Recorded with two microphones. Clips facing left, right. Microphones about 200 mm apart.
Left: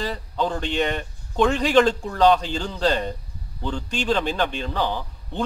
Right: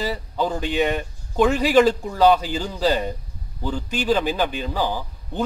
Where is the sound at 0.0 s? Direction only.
5° right (ahead or behind).